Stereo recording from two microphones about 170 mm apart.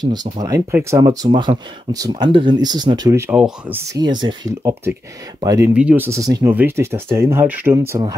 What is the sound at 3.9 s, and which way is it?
Speech, 25° right (ahead or behind).